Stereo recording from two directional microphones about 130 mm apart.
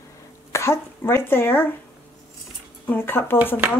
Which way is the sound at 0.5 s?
20° left (ahead or behind).